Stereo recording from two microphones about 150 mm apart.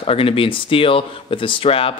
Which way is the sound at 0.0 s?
40° left (ahead or behind).